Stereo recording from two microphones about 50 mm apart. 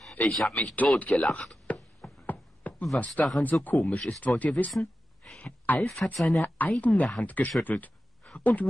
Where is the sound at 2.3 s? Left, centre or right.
Left.